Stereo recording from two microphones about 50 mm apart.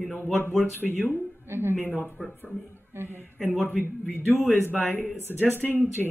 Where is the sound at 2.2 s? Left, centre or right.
Centre.